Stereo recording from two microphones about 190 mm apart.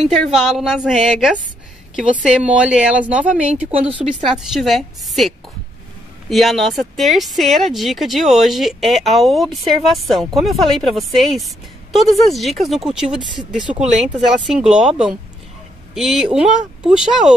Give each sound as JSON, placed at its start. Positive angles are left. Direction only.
{"t": 0.2, "sound": "speech", "side_deg": 0}
{"t": 3.9, "sound": "a woman's voice", "side_deg": -25}
{"t": 4.2, "sound": "speech", "side_deg": 0}